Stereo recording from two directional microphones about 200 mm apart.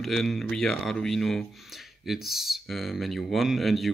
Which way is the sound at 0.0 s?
Centre (ahead or behind).